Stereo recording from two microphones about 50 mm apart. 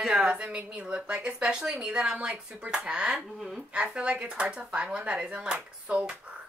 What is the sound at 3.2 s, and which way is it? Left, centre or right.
Speech, centre.